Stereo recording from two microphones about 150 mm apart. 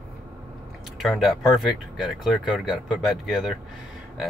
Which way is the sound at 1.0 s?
Centre (ahead or behind).